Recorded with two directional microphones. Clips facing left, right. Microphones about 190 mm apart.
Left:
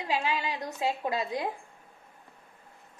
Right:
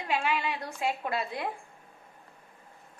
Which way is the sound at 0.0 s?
15° left (ahead or behind).